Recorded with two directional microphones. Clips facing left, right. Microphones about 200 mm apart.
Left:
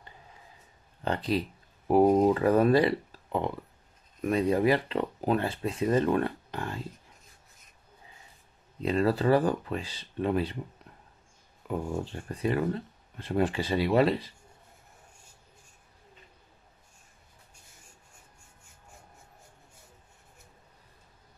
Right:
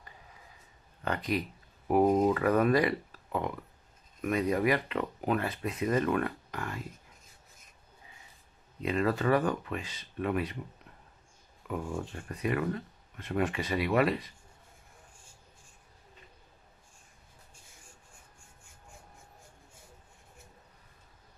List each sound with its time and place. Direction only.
1.0 s speech: 30° left (ahead or behind)
8.8 s speech: 35° left (ahead or behind)
11.6 s speech: 30° left (ahead or behind)